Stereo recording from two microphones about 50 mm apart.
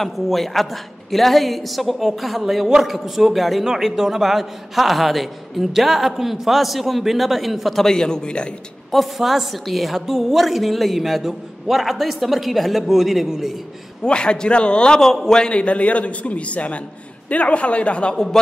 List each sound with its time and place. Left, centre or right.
0.0 s a woman's voice: centre
7.8 s a man's voice: centre
8.9 s a woman's voice: centre
14.0 s a man's voice: centre